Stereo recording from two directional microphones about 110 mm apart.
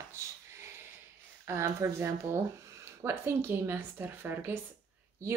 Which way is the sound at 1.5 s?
25° right (ahead or behind).